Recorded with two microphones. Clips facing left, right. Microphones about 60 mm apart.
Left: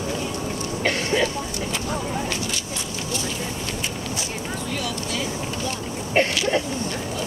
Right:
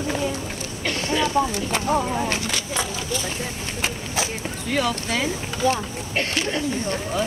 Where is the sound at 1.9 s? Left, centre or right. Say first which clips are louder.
Right 7 dB; right.